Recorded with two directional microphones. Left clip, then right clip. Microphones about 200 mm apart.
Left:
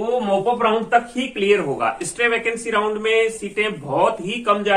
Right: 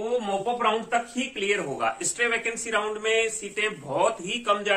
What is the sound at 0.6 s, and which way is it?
Speech, 15° right (ahead or behind).